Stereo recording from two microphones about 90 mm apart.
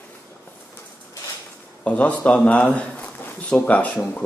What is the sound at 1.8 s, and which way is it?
Speech, 15° left (ahead or behind).